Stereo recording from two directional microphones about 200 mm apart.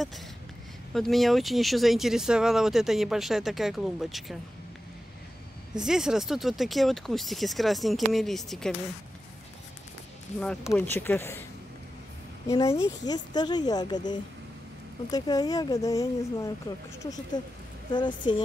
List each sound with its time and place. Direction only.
0.9 s speech: centre (ahead or behind)
5.8 s speech: 5° right (ahead or behind)
10.4 s speech: 5° left (ahead or behind)
12.5 s speech: 30° left (ahead or behind)